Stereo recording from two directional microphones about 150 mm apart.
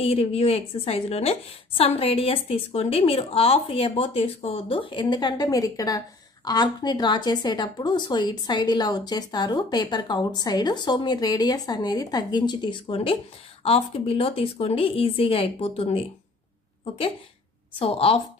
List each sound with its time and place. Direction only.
0.0 s a woman's voice: 40° left (ahead or behind)
17.7 s a woman's voice: 40° left (ahead or behind)